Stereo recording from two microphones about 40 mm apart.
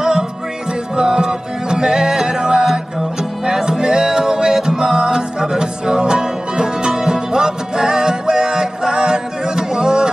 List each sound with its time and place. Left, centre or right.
0.9 s music: centre